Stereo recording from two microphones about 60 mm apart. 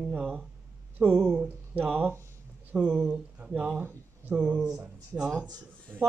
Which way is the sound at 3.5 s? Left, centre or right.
Right.